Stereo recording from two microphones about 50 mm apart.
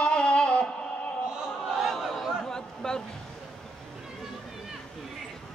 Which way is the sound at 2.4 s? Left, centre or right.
Centre.